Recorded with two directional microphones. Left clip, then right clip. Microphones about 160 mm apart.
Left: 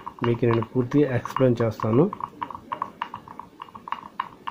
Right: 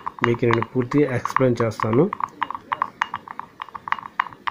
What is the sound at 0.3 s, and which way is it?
Speech, 10° right (ahead or behind).